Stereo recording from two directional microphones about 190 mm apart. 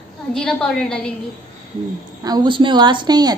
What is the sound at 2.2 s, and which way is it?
A woman's voice, 20° right (ahead or behind).